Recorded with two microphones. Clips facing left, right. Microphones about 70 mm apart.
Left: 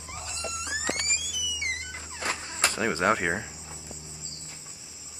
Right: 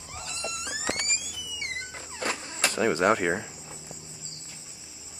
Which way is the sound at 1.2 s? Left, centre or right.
Right.